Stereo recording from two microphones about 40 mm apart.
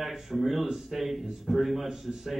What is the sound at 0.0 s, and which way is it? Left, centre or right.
A man's voice, centre.